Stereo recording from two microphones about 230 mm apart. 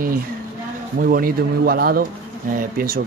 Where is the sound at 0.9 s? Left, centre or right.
Right.